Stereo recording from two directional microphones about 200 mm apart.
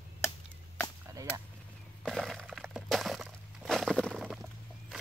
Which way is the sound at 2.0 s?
Centre (ahead or behind).